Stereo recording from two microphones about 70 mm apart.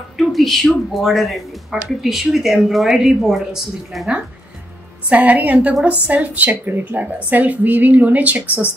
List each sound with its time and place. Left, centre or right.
0.2 s speech: centre
5.1 s a woman's voice: right